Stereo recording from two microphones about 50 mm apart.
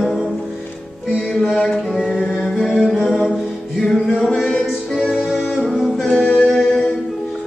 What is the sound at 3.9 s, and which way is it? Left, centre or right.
Music, centre.